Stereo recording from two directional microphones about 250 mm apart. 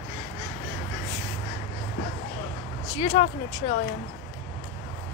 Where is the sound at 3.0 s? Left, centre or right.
Left.